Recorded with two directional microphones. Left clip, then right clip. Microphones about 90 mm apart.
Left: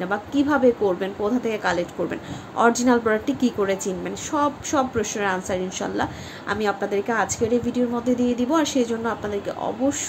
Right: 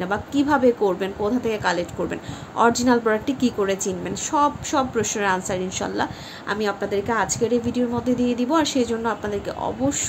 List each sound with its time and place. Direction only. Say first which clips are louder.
0.0 s a woman's voice: even; 25° right (ahead or behind)
1.2 s a woman's voice: right 1 dB; 15° right (ahead or behind)